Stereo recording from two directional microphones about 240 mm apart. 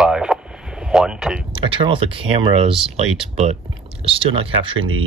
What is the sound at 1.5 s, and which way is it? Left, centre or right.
Speech, right.